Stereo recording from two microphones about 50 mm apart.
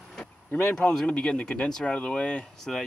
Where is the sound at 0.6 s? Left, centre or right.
Centre.